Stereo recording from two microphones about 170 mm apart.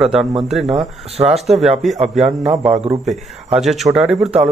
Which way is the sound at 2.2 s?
40° right (ahead or behind).